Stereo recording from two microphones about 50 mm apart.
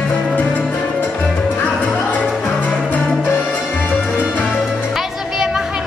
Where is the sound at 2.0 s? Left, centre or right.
Left.